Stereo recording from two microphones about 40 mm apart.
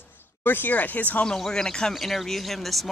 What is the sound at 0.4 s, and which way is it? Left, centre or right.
Speech, left.